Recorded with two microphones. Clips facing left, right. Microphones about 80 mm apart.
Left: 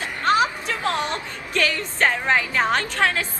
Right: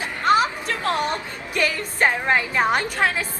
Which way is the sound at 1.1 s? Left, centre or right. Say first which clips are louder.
Even; centre.